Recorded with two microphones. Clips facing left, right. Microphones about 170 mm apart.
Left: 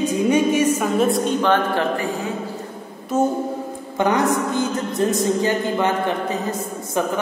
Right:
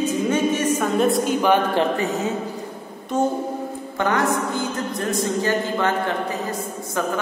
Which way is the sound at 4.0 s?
20° left (ahead or behind).